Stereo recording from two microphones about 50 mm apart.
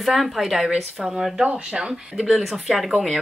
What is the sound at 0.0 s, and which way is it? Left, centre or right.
Speech, centre.